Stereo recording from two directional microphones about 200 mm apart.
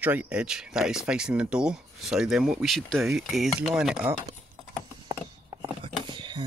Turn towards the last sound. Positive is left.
turn(degrees=-25)  # may be behind; listen again after turning